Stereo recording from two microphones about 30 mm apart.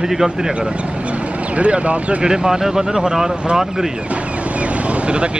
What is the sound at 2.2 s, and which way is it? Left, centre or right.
Speech, right.